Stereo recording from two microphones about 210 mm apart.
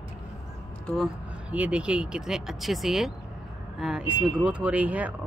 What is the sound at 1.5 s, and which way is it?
Speech, 5° right (ahead or behind).